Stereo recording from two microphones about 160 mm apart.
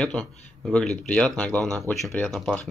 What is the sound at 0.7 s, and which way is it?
Speech, 5° left (ahead or behind).